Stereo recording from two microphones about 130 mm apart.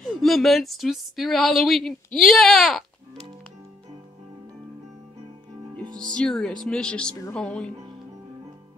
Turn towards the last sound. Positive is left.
turn(degrees=5)  # may be behind; listen again after turning